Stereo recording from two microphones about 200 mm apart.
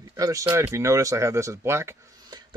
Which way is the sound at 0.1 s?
15° right (ahead or behind).